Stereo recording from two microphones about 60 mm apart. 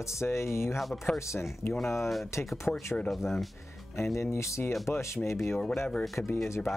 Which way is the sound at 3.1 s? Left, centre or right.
Centre.